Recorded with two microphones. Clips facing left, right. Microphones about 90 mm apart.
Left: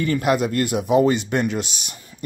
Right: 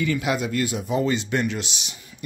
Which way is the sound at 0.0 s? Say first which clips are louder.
Left 4 dB; 45° left (ahead or behind).